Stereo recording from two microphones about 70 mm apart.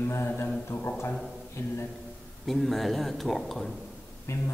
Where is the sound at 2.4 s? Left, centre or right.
Centre.